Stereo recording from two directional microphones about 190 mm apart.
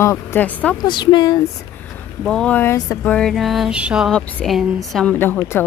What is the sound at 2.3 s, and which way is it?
Speech, 5° left (ahead or behind).